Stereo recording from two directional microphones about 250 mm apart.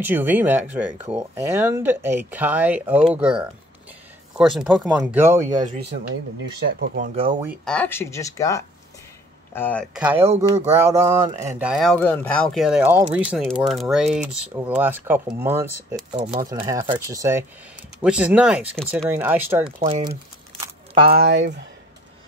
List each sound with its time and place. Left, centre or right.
0.0 s speech: centre
5.4 s speech: right
7.4 s speech: centre
9.9 s speech: centre
10.2 s speech: right
10.8 s speech: centre
16.2 s speech: right
16.4 s speech: centre
19.8 s speech: right
20.6 s single-lens reflex camera: right
21.2 s speech: right